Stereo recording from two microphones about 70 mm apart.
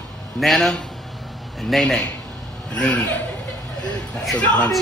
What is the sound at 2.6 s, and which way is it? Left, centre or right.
Chuckle, centre.